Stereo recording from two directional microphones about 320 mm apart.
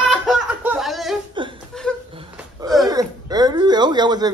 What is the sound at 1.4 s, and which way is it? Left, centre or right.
Chuckle, centre.